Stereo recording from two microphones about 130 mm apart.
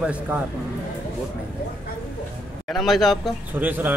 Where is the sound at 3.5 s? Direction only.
15° right (ahead or behind).